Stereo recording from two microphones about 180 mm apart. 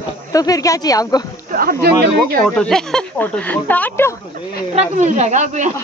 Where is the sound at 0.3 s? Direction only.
20° left (ahead or behind).